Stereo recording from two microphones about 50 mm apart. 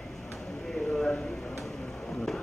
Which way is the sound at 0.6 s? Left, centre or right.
Centre.